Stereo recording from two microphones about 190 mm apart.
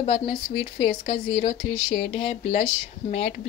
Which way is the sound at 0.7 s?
30° left (ahead or behind).